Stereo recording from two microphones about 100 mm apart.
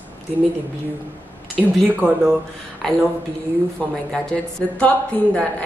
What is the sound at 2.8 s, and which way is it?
A woman's voice, 5° left (ahead or behind).